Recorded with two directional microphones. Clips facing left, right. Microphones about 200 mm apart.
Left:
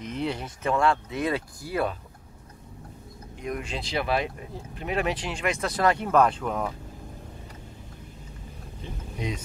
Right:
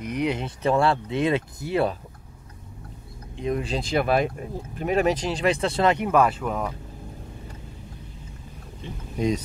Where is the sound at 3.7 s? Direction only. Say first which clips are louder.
Right 4 dB; 50° right (ahead or behind); by 6.0 s 25° right (ahead or behind).